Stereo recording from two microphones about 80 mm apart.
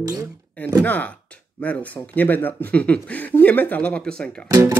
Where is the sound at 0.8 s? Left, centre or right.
Centre.